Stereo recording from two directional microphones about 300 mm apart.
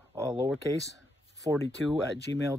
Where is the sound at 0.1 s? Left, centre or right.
Centre.